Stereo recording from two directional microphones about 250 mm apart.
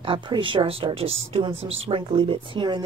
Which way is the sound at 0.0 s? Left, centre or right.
Centre.